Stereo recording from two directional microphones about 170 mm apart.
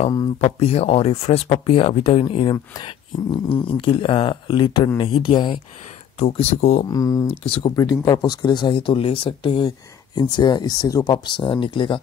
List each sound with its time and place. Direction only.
0.4 s speech: 35° left (ahead or behind)
6.9 s speech: 20° left (ahead or behind)
7.4 s speech: 30° left (ahead or behind)